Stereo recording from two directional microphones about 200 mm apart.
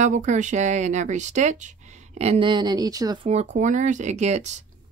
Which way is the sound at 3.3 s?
35° right (ahead or behind).